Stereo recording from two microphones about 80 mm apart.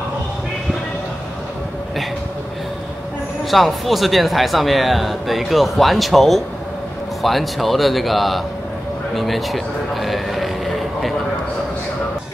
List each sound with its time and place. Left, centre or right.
3.4 s speech: centre